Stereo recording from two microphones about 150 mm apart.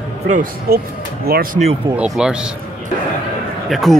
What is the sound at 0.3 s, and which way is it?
Speech, 65° right (ahead or behind).